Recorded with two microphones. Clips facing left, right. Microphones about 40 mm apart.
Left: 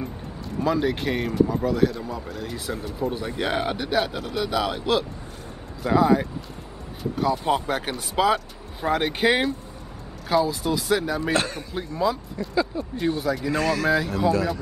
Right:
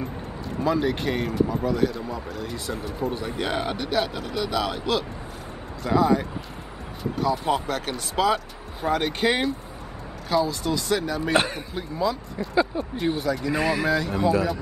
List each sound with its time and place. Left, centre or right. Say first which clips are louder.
0.6 s speech: even; centre
11.3 s speech: right 6 dB; centre
11.7 s speech: left 3 dB; centre
12.7 s speech: right 1 dB; right
13.2 s speech: even; centre
13.6 s speech: even; centre
13.8 s speech: left 2 dB; centre
14.3 s speech: right 1 dB; centre